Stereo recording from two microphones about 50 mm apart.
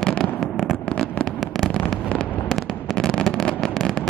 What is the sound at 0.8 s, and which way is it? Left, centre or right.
Fireworks, left.